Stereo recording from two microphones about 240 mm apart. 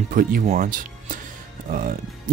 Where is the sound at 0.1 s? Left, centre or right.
Right.